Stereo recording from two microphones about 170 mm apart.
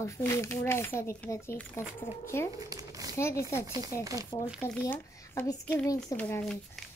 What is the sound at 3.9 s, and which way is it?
Speech, 20° left (ahead or behind).